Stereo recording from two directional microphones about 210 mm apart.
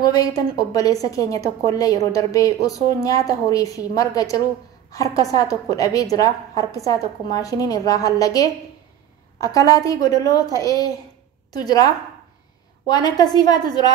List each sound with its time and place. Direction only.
0.0 s a woman's voice: 15° left (ahead or behind)